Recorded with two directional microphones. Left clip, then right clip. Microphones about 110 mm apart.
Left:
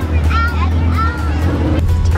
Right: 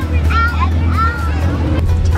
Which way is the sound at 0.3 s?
20° right (ahead or behind).